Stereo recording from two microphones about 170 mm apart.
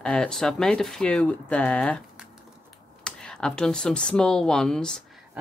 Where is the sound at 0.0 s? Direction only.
5° left (ahead or behind).